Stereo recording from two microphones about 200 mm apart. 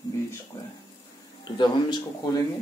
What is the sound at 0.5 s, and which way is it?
Speech, 15° left (ahead or behind).